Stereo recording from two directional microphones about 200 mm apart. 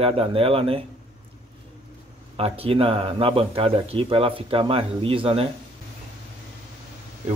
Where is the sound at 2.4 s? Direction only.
30° right (ahead or behind).